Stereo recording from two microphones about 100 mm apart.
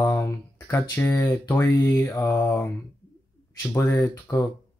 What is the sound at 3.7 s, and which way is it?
Speech, 25° left (ahead or behind).